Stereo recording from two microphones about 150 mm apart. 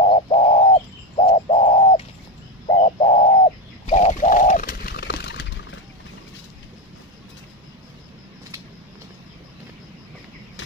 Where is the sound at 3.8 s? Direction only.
50° left (ahead or behind); by 5.3 s 90° left.